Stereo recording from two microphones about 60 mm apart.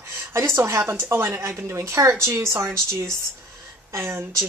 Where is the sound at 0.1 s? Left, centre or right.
Right.